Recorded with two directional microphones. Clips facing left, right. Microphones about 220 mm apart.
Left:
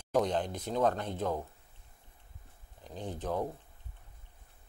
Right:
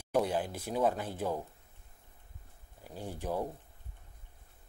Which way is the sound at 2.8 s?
10° right (ahead or behind).